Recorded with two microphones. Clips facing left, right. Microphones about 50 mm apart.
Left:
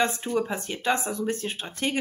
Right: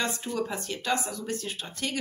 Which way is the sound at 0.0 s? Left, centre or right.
Left.